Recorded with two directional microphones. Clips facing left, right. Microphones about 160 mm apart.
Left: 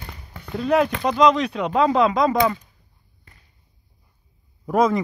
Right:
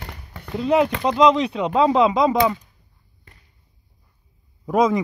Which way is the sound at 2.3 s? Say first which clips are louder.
Right 1 dB; 5° right (ahead or behind).